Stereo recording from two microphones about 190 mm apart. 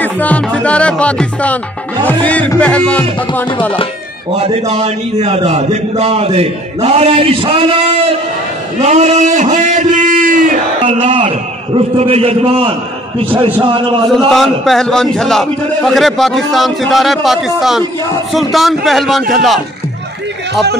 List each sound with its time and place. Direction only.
0.0 s music: 10° left (ahead or behind)
2.0 s speech: 10° left (ahead or behind)
4.3 s a man's voice: 30° right (ahead or behind)
8.8 s a man's voice: 35° right (ahead or behind)
10.9 s a man's voice: 30° right (ahead or behind)
14.3 s a man's voice: centre (ahead or behind)